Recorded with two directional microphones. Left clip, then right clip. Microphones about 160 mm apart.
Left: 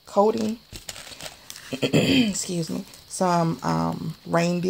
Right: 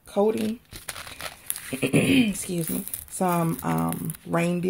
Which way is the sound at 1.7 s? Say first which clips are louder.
Left 1 dB; centre (ahead or behind).